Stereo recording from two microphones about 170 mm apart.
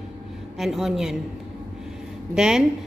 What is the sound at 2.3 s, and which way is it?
Speech, 5° right (ahead or behind).